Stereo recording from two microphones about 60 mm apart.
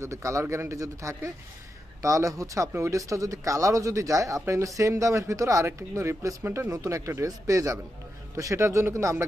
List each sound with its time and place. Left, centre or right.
0.0 s speech: right
6.7 s speech: right
7.2 s a man's voice: right
8.4 s speech: right